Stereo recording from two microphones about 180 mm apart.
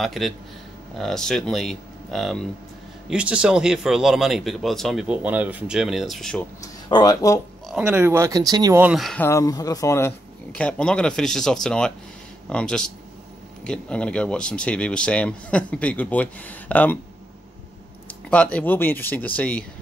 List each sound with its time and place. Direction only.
0.0 s speech: centre (ahead or behind)
6.6 s speech: 20° left (ahead or behind)
7.6 s speech: 5° right (ahead or behind)
8.8 s speech: centre (ahead or behind)
9.2 s speech: 15° left (ahead or behind)
18.0 s speech: 5° left (ahead or behind)